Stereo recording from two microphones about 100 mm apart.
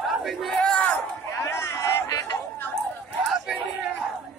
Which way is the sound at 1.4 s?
25° left (ahead or behind).